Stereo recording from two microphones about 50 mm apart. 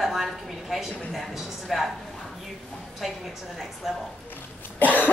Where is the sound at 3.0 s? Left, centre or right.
Centre.